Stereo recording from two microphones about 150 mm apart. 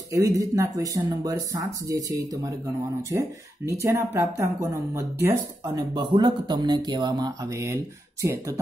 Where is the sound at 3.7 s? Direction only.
20° right (ahead or behind).